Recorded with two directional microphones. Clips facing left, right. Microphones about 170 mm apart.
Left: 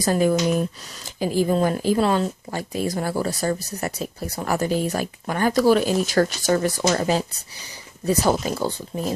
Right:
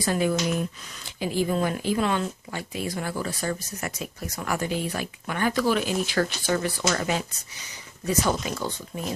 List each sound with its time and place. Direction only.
0.0 s speech: 40° left (ahead or behind)